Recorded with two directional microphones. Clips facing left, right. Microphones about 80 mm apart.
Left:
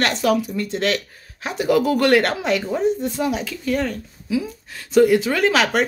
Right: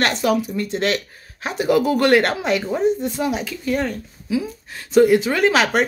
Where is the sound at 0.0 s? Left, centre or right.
Centre.